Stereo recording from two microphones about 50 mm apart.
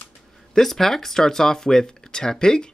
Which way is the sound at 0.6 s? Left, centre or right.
Centre.